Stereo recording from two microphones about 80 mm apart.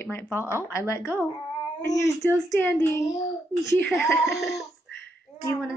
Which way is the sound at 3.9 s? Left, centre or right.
Centre.